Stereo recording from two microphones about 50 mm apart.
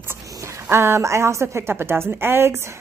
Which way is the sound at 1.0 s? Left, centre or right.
Right.